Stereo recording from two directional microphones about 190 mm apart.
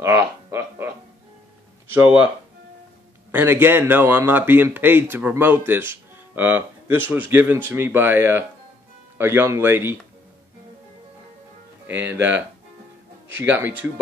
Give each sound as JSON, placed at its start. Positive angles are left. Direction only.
{"t": 0.0, "sound": "a sound", "side_deg": -15}
{"t": 1.9, "sound": "speech", "side_deg": -10}
{"t": 3.3, "sound": "speech", "side_deg": -10}
{"t": 13.3, "sound": "speech", "side_deg": -10}